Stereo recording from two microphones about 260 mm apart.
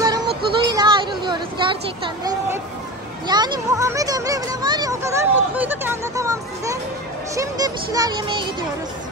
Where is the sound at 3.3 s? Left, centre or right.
Centre.